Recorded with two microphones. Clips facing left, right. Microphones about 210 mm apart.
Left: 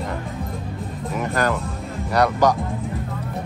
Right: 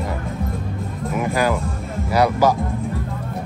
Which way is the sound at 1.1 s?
5° right (ahead or behind).